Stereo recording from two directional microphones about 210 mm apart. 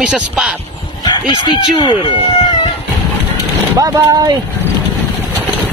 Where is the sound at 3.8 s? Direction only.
15° right (ahead or behind).